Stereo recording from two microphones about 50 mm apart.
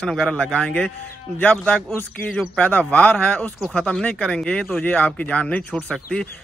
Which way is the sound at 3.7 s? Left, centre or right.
Left.